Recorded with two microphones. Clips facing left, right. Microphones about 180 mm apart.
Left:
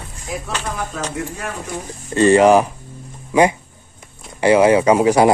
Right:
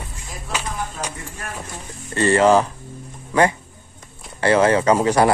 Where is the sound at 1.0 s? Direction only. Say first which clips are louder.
Left 4 dB; 90° left.